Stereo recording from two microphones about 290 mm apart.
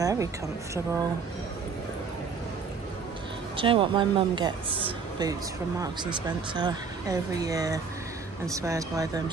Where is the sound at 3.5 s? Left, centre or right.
Centre.